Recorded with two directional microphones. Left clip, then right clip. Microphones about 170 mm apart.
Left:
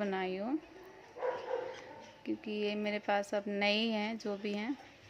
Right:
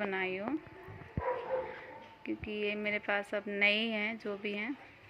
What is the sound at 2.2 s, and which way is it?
A woman's voice, 25° left (ahead or behind).